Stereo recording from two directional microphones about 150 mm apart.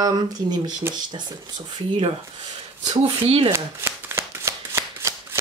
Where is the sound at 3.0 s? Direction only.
40° right (ahead or behind).